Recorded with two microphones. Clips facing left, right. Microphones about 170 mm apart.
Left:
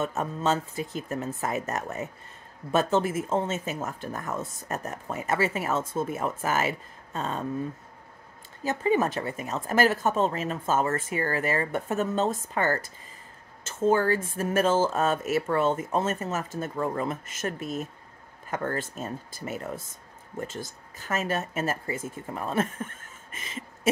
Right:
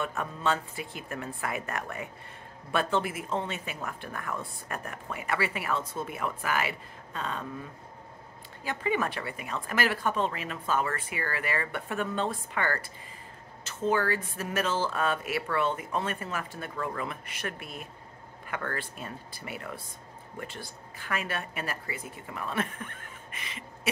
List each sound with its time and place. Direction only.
0.2 s speech: 40° left (ahead or behind)
8.6 s speech: 40° left (ahead or behind)
13.8 s speech: 45° left (ahead or behind)